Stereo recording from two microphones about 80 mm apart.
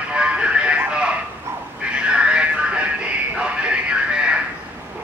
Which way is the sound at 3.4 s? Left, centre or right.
Centre.